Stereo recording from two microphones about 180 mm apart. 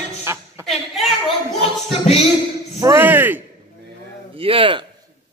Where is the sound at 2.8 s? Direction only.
15° right (ahead or behind).